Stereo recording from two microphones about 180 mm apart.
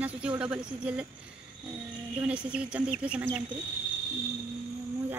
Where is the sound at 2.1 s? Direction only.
5° right (ahead or behind).